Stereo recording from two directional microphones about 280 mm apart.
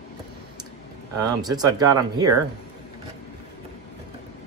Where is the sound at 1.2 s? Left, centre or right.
Centre.